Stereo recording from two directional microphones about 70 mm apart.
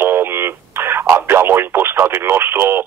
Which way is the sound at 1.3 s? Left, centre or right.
Right.